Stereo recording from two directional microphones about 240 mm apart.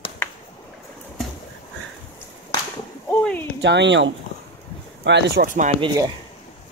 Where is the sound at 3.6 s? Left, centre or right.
Right.